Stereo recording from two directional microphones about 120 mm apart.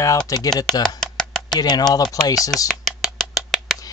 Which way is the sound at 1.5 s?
35° left (ahead or behind).